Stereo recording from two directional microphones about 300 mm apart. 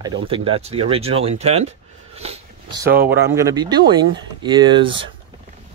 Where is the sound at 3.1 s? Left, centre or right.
Centre.